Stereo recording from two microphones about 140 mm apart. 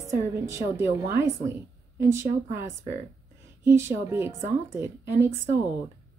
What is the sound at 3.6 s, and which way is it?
A woman's voice, 20° right (ahead or behind).